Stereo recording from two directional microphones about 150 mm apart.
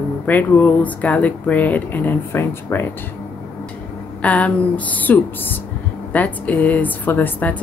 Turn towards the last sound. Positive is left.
turn(degrees=10)  # may be behind; listen again after turning